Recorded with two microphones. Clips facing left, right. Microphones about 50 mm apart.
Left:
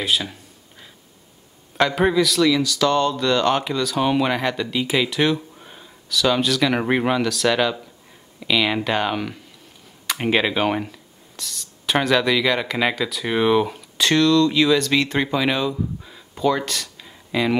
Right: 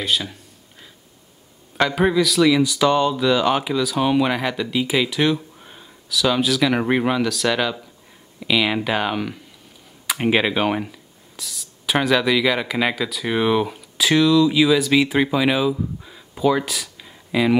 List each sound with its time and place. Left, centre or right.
0.0 s speech: centre
1.8 s speech: centre
2.4 s speech: centre